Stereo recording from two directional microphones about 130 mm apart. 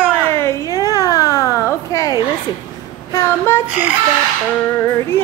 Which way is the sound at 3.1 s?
20° left (ahead or behind).